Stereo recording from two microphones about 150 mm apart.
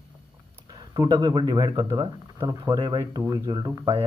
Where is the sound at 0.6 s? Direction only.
25° right (ahead or behind).